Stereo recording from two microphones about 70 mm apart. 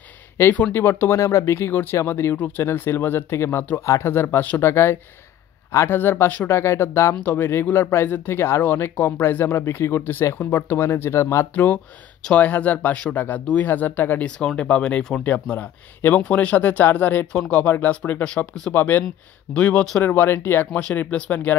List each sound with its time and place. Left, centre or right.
1.1 s speech: left
5.9 s speech: left
11.5 s speech: left
14.2 s speech: centre; by 17.3 s left
17.3 s speech: centre
17.6 s speech: left
18.2 s speech: centre
18.7 s speech: left
19.5 s speech: centre
20.0 s speech: left